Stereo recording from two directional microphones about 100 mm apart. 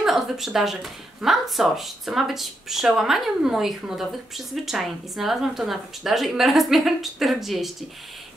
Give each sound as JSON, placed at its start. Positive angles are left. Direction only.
{"t": 0.0, "sound": "speech", "side_deg": -5}